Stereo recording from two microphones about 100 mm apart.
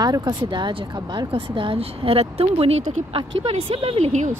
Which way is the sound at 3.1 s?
90° right.